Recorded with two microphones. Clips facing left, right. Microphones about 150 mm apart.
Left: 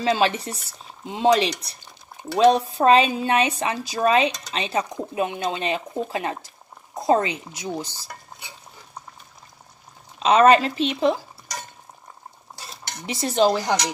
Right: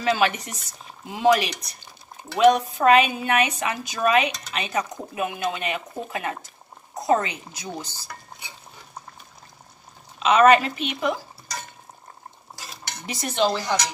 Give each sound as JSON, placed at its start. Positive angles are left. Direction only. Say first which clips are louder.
{"t": 0.0, "sound": "speech", "louder": "left 1 dB", "side_deg": 25}
{"t": 10.1, "sound": "speech", "louder": "left 1 dB", "side_deg": 30}
{"t": 13.0, "sound": "speech", "louder": "left 4 dB", "side_deg": 25}
{"t": 13.3, "sound": "speech", "louder": "left 4 dB", "side_deg": 40}